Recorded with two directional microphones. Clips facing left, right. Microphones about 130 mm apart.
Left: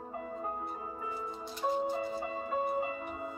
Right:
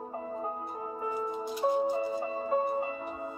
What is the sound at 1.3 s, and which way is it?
Music, 15° right (ahead or behind).